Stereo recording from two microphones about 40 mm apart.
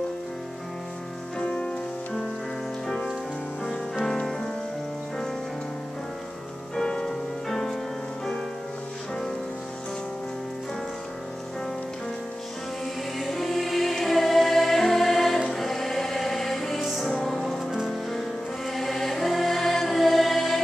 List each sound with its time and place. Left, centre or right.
1.4 s music: left
3.9 s music: centre
6.7 s music: centre
13.2 s music: centre
18.7 s music: centre